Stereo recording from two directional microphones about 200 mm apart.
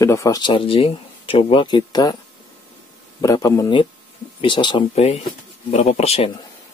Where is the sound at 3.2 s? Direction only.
15° left (ahead or behind).